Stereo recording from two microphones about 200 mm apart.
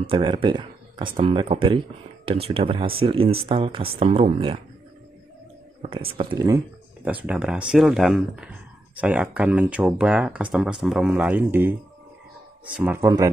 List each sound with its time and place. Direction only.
0.0 s speech: 25° right (ahead or behind)
5.8 s a sound: 25° right (ahead or behind)
6.1 s speech: 20° right (ahead or behind)
7.2 s speech: 5° right (ahead or behind)
12.7 s speech: 10° right (ahead or behind)